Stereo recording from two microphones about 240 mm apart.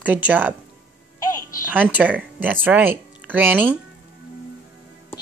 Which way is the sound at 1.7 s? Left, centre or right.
Centre.